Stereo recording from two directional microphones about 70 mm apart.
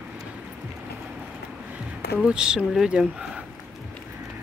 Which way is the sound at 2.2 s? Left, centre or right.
Centre.